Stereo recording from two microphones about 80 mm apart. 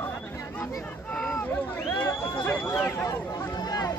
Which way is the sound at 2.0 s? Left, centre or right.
Left.